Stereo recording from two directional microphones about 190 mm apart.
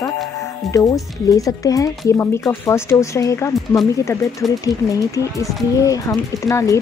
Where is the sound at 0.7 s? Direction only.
15° left (ahead or behind).